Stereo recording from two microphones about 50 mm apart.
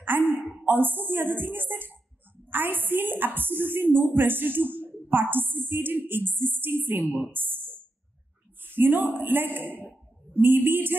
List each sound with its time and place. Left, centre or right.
0.0 s a woman's voice: right